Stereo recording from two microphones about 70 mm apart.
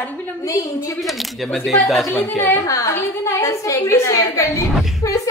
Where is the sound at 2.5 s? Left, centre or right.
Left.